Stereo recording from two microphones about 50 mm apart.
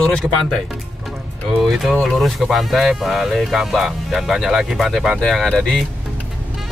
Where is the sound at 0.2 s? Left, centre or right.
Right.